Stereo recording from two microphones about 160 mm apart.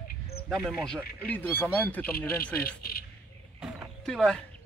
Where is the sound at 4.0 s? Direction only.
5° left (ahead or behind).